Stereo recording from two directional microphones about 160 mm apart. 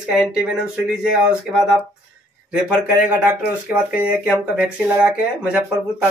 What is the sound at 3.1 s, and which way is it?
Speech, 10° right (ahead or behind).